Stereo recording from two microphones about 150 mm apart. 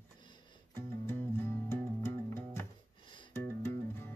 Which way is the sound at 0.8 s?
15° left (ahead or behind).